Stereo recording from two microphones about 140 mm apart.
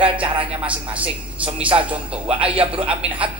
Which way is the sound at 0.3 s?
35° right (ahead or behind).